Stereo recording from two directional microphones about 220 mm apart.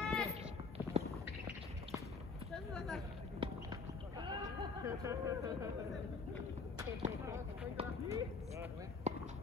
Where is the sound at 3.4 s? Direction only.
25° right (ahead or behind).